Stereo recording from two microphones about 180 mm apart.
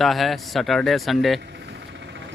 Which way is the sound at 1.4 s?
70° right (ahead or behind).